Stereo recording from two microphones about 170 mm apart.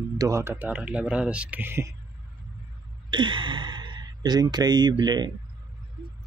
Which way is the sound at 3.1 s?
30° right (ahead or behind).